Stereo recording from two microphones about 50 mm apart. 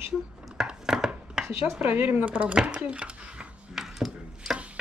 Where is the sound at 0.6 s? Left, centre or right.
Centre.